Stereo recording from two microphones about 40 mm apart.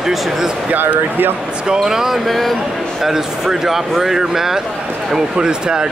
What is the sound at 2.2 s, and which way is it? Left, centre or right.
Speech, centre.